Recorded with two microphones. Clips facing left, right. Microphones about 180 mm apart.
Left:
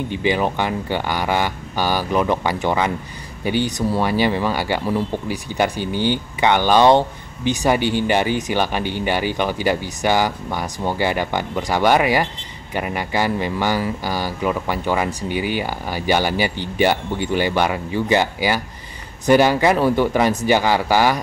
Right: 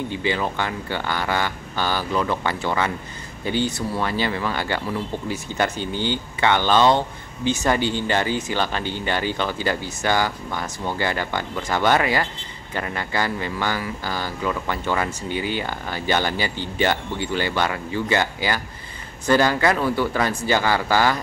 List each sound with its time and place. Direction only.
0.1 s speech: 15° left (ahead or behind)